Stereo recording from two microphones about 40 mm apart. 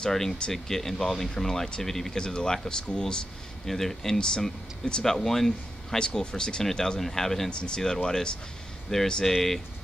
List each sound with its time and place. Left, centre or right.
0.0 s speech: centre
2.1 s speech: centre
3.6 s speech: centre
7.5 s speech: left
9.2 s speech: centre